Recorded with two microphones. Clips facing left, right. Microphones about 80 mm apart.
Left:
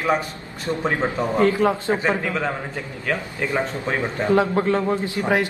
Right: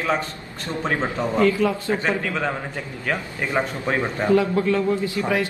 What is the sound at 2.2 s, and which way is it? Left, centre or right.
Speech, centre.